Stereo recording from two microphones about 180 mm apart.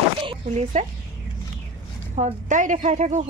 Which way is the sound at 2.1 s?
45° right (ahead or behind).